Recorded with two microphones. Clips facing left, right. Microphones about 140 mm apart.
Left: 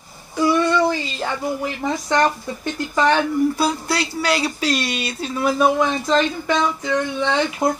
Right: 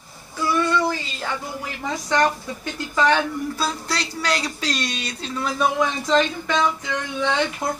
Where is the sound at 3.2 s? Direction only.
10° left (ahead or behind).